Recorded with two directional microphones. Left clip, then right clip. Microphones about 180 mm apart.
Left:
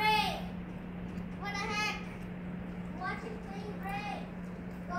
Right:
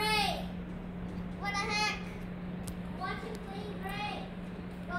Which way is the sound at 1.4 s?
80° right.